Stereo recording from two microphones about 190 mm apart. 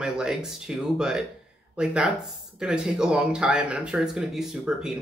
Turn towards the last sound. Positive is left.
turn(degrees=-5)  # may be behind; listen again after turning